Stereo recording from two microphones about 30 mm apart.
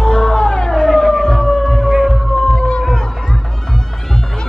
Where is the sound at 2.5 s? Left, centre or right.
Left.